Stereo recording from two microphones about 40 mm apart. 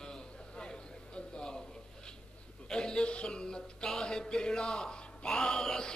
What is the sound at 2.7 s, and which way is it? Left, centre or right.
Music, left.